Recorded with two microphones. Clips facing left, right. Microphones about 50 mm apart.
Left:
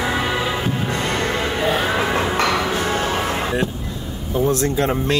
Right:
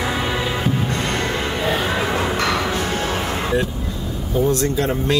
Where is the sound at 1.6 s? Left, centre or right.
Centre.